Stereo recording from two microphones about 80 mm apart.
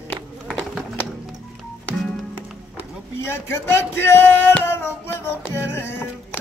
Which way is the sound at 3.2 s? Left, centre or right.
Left.